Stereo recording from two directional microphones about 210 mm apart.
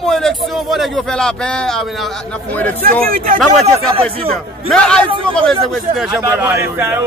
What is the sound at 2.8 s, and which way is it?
Speech, 45° right (ahead or behind).